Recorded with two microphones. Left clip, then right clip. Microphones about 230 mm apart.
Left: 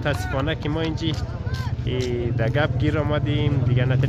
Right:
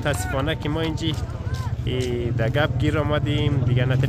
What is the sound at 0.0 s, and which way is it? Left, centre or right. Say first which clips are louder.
Speech: even; centre.